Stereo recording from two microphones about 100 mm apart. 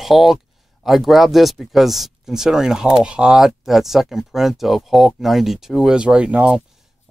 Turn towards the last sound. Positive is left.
turn(degrees=-10)  # may be behind; listen again after turning